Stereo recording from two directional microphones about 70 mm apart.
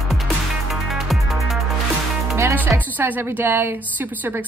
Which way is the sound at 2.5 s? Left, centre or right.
Right.